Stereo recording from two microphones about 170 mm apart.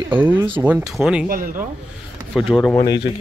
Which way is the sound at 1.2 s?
60° right (ahead or behind).